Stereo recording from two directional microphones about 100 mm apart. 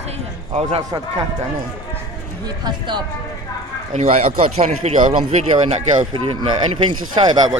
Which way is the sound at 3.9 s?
90° right.